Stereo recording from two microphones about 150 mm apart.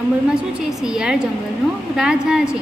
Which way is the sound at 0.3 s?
5° right (ahead or behind).